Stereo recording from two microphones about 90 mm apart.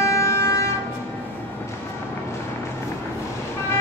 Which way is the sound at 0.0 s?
30° left (ahead or behind).